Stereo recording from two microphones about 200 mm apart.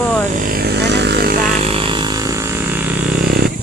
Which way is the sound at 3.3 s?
50° right (ahead or behind).